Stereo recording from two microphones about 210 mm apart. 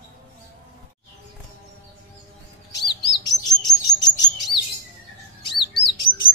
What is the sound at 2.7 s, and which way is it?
Chirp, 20° left (ahead or behind).